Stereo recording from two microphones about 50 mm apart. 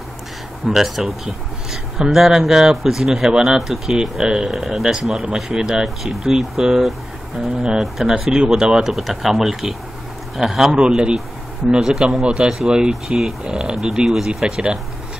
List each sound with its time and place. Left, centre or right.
0.7 s speech: centre
4.5 s speech: centre
8.9 s speech: centre
10.8 s speech: centre